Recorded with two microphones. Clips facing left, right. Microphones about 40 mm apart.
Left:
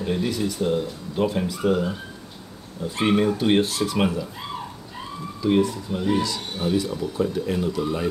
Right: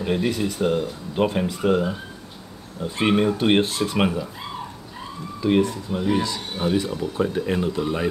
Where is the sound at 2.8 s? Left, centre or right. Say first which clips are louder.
Right 1 dB; right.